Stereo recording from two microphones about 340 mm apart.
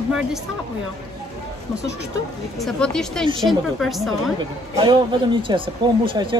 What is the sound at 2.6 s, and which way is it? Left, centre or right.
Speech, centre.